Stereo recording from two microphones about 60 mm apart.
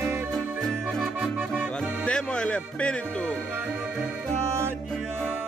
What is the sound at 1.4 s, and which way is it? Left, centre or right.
Music, right.